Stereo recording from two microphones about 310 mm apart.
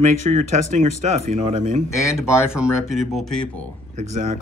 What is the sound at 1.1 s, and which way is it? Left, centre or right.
Speech, right.